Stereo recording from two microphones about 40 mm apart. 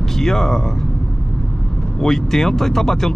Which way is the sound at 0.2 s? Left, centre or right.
Centre.